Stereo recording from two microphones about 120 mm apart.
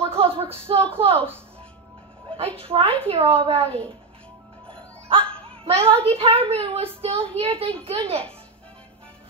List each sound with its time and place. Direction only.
0.0 s speech: 50° right (ahead or behind)
2.3 s a child's voice: 50° right (ahead or behind)
5.2 s music: 10° left (ahead or behind)
5.6 s a child's voice: 50° right (ahead or behind)